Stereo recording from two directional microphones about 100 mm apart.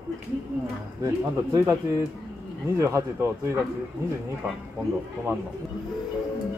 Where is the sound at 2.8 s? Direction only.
30° right (ahead or behind).